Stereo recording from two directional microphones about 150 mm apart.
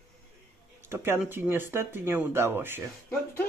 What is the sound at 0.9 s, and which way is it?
Speech, 15° right (ahead or behind).